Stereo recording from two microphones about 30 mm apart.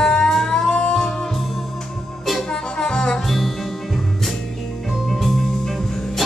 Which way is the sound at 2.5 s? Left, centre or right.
Left.